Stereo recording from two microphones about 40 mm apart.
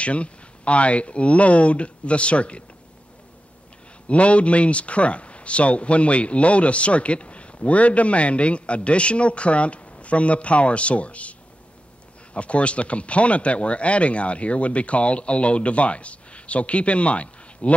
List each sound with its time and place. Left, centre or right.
0.0 s speech: left
4.1 s speech: left
12.4 s speech: left